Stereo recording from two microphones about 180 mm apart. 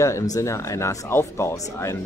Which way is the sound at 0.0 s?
15° left (ahead or behind).